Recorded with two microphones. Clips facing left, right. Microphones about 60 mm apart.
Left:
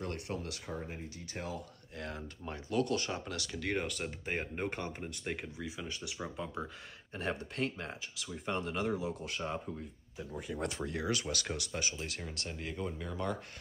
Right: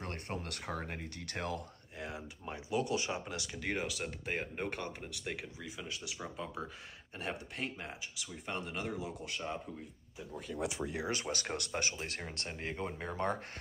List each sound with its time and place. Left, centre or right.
0.0 s speech: right
2.0 s speech: centre
10.7 s speech: centre
11.1 s speech: right
11.5 s speech: right
12.0 s speech: right